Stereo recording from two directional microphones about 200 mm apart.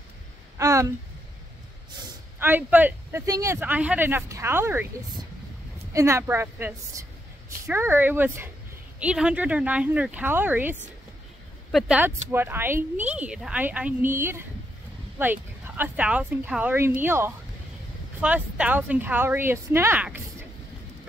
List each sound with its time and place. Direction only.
0.6 s a sound: 15° right (ahead or behind)
2.3 s speech: 10° right (ahead or behind)
5.9 s speech: 15° right (ahead or behind)